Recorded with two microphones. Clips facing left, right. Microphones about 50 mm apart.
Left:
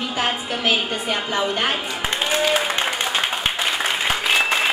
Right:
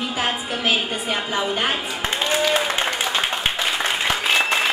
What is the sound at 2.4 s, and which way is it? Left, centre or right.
Applause, centre.